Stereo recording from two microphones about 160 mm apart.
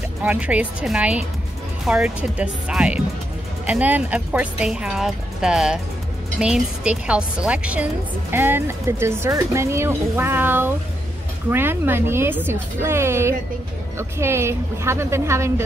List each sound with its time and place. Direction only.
0.2 s a woman's voice: 10° right (ahead or behind)